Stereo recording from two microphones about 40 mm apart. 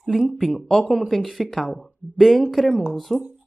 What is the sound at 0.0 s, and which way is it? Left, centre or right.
Speech, centre.